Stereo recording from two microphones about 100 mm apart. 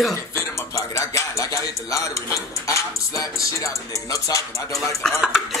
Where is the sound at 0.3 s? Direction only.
30° left (ahead or behind).